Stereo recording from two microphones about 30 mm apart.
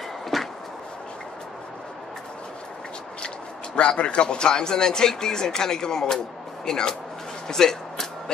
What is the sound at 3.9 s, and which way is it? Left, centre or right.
Speech, left.